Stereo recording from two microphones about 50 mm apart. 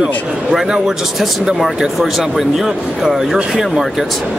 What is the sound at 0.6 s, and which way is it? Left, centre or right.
Speech, centre.